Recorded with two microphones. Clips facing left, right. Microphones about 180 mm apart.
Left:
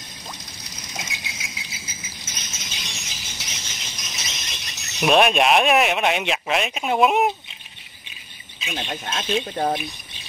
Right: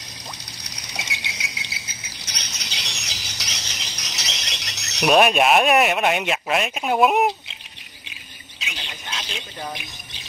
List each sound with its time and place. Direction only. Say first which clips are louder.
0.7 s cricket: even; 70° right (ahead or behind)
5.0 s speech: right 1 dB; centre (ahead or behind)
8.6 s a sound: left 6 dB; 75° right (ahead or behind)